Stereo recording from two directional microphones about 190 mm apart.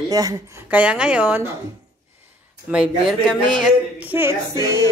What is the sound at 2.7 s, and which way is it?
Speech, 5° right (ahead or behind).